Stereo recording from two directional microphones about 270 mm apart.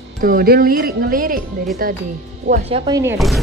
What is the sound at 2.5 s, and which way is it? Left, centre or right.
Speech, right.